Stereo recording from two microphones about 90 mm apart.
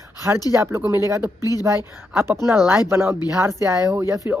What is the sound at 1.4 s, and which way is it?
Speech, 40° left (ahead or behind).